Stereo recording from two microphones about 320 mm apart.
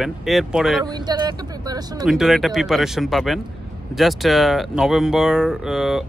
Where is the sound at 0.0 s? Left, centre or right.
Centre.